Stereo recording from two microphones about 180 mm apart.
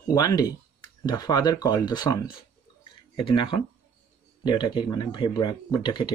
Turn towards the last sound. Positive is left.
turn(degrees=20)  # may be behind; listen again after turning